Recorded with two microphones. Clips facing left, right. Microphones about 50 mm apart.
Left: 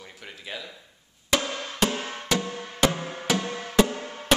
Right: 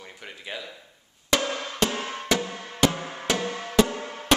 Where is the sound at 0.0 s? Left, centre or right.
Centre.